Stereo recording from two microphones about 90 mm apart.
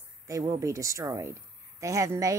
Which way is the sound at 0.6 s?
35° right (ahead or behind).